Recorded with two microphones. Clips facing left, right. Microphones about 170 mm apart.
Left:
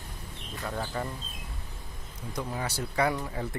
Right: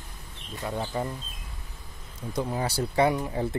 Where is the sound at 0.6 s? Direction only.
20° right (ahead or behind).